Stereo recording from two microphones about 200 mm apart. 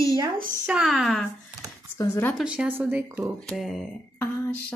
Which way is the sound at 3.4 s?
Centre (ahead or behind).